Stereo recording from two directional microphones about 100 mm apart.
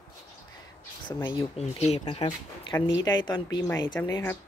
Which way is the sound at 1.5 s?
90° left.